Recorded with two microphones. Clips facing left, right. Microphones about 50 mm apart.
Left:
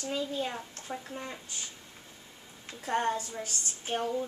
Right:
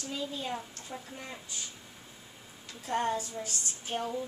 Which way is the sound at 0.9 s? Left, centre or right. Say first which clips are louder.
Left 5 dB; centre.